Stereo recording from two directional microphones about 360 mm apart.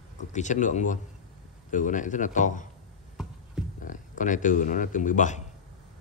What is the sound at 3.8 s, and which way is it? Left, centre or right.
A man's voice, left.